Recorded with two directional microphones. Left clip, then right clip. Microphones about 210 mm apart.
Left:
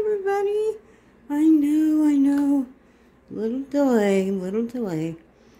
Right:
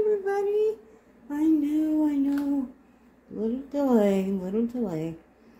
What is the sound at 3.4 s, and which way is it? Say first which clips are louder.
A woman's voice: left 5 dB; 30° left (ahead or behind).